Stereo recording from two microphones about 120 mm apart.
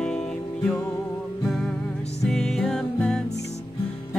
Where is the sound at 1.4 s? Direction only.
Centre (ahead or behind).